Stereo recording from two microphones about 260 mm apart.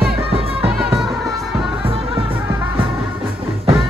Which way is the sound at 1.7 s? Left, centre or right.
Right.